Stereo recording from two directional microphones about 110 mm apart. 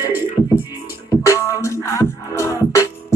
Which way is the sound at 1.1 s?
30° left (ahead or behind).